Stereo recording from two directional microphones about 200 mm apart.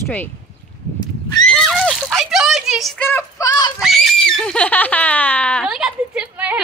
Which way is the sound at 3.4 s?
20° left (ahead or behind).